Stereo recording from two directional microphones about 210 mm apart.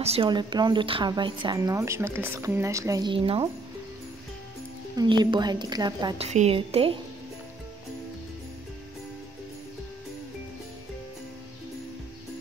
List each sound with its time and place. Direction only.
0.0 s a woman's voice: 25° right (ahead or behind)
4.9 s a woman's voice: 20° right (ahead or behind)
6.2 s a woman's voice: 30° right (ahead or behind)